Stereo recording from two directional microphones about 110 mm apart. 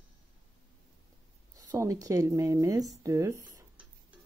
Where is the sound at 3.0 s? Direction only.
25° right (ahead or behind).